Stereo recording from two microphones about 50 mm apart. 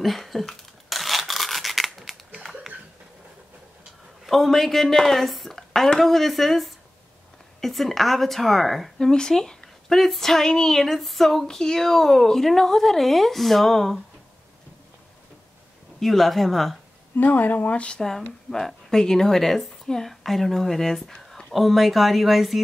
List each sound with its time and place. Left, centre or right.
0.0 s a sound: centre
4.3 s speech: centre
16.0 s speech: centre
17.1 s speech: left
17.9 s speech: centre